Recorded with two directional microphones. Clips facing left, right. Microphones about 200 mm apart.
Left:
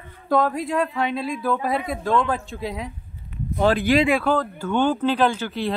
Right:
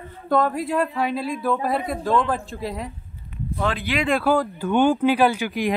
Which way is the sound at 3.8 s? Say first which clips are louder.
Left 7 dB; 45° left (ahead or behind).